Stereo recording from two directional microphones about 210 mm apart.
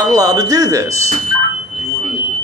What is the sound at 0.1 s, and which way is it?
Speech, 15° right (ahead or behind).